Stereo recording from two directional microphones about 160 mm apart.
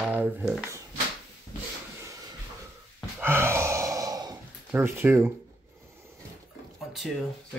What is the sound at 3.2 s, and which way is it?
Sigh, 15° right (ahead or behind).